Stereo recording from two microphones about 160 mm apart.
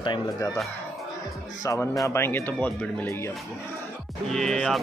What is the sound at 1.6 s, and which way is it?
Speech, 20° left (ahead or behind).